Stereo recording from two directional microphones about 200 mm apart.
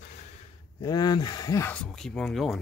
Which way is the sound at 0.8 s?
20° left (ahead or behind).